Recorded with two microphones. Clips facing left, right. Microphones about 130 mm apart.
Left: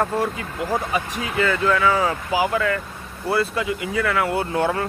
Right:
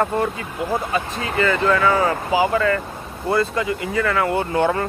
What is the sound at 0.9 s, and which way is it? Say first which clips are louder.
Speech: right 1 dB; 15° left (ahead or behind).